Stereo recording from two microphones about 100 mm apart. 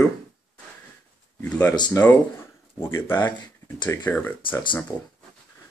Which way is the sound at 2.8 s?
25° left (ahead or behind).